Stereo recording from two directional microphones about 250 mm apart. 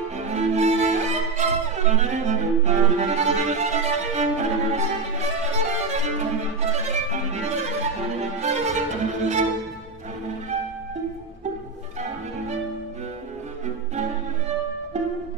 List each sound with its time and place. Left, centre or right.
0.3 s violin: right
5.4 s music: right